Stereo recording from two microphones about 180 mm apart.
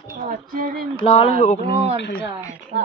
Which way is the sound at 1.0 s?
30° left (ahead or behind).